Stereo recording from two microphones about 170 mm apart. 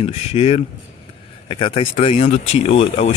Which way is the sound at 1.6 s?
35° left (ahead or behind).